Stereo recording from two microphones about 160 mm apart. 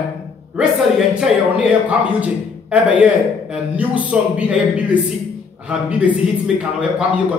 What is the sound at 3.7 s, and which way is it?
A man's voice, 10° right (ahead or behind).